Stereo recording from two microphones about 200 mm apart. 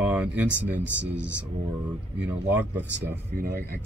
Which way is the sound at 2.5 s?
10° right (ahead or behind).